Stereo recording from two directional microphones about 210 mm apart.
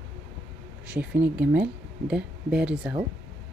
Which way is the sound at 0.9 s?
5° right (ahead or behind).